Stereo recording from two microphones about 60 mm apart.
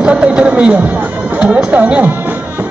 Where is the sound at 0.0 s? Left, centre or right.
Centre.